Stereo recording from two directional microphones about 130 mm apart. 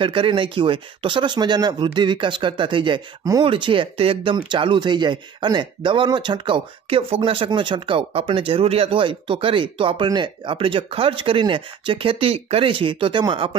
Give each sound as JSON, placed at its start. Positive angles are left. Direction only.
{"t": 0.0, "sound": "speech", "side_deg": -40}